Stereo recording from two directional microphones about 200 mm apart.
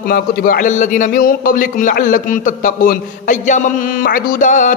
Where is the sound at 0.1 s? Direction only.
45° left (ahead or behind).